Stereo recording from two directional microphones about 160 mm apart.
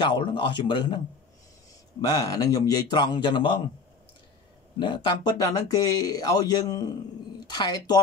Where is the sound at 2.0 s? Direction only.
25° left (ahead or behind).